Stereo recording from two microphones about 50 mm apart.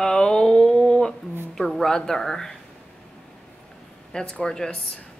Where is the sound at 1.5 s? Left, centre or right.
Centre.